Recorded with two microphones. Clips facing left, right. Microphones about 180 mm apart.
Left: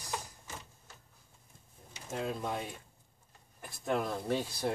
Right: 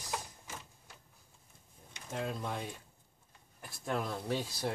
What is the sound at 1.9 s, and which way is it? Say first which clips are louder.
Speech: left 2 dB; 10° left (ahead or behind).